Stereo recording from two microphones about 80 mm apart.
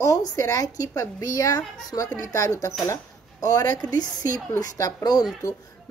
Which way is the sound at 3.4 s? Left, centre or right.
Left.